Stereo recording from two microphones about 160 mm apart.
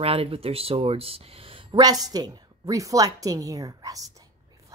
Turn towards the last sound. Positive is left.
turn(degrees=-20)  # may be behind; listen again after turning